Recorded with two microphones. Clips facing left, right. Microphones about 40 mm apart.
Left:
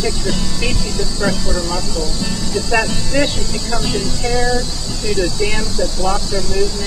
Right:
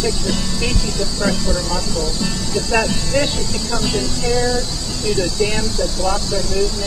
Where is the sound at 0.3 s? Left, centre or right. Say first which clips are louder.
Even; centre.